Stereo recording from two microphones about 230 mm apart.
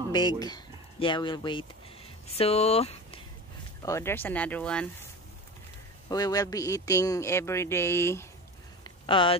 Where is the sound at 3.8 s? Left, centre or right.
Centre.